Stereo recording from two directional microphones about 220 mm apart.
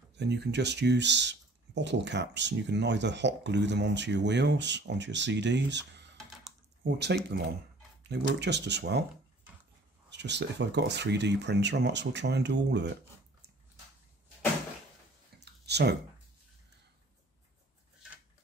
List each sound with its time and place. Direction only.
0.1 s speech: 50° right (ahead or behind)
10.1 s speech: 50° right (ahead or behind)
15.4 s a sound: 50° right (ahead or behind)